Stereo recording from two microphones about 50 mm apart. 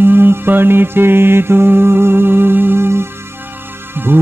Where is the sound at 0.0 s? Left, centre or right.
Right.